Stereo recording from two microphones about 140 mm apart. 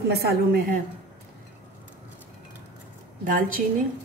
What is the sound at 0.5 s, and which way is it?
Speech, 90° right.